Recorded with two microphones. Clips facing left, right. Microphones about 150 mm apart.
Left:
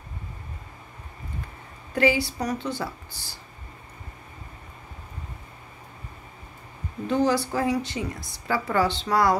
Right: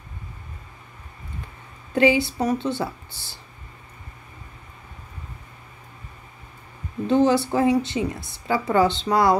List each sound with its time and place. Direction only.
2.0 s a woman's voice: 20° right (ahead or behind)
7.1 s a woman's voice: 20° right (ahead or behind)